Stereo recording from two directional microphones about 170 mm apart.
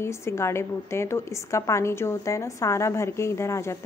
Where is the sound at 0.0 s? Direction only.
15° left (ahead or behind).